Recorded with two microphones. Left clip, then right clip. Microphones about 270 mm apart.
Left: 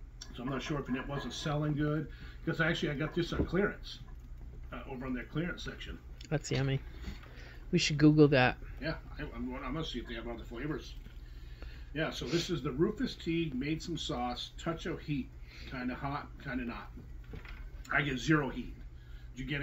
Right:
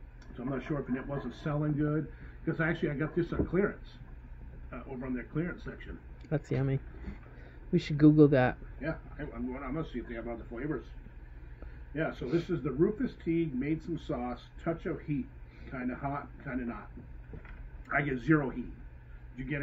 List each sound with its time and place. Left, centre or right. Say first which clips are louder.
0.3 s speech: right 1 dB; left
12.2 s speech: right 2 dB; centre
13.7 s speech: right 1 dB; centre
14.0 s speech: left 1 dB; left
17.8 s a man's voice: right 1 dB; left